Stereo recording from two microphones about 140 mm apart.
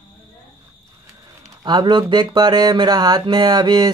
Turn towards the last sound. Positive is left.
turn(degrees=-30)  # may be behind; listen again after turning